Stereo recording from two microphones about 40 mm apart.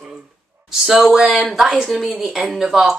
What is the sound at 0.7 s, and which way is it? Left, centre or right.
Speech, centre.